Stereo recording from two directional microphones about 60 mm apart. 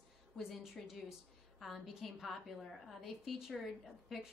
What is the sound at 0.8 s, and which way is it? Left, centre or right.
A woman's voice, centre.